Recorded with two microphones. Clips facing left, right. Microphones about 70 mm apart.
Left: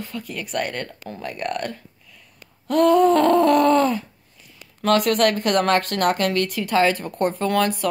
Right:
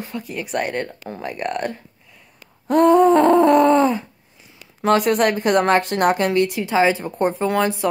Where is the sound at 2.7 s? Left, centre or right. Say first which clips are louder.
Right 3 dB; right.